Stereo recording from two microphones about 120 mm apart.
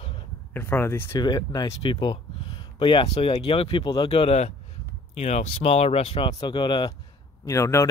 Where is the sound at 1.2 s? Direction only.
35° left (ahead or behind).